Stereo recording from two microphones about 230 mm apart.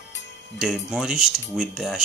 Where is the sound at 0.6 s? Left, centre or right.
Centre.